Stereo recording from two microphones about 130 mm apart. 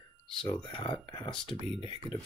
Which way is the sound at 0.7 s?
40° left (ahead or behind).